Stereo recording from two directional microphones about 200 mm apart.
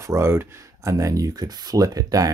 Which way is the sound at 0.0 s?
15° right (ahead or behind).